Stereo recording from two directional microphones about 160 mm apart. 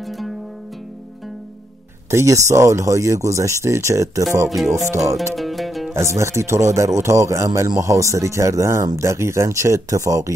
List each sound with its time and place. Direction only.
2.0 s a man's voice: 20° right (ahead or behind)
4.6 s speech: centre (ahead or behind)
5.3 s music: centre (ahead or behind)
5.9 s a man's voice: 15° right (ahead or behind)